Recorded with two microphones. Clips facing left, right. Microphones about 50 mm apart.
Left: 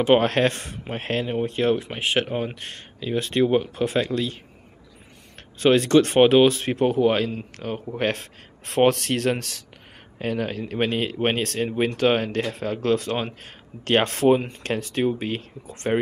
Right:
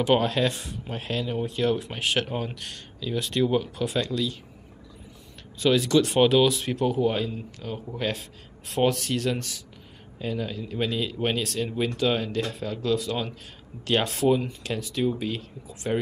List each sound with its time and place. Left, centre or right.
0.2 s speech: left
5.6 s speech: left
7.0 s speech: left
7.7 s speech: left